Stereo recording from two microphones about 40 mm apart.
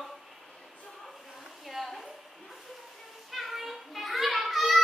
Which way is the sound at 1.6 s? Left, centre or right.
Centre.